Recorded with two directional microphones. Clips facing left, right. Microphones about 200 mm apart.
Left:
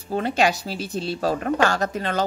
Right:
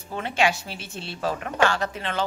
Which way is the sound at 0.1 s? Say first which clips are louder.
Left 3 dB; 40° left (ahead or behind).